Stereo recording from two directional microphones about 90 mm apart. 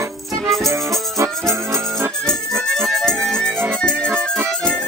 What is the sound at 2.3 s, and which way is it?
Music, 5° left (ahead or behind).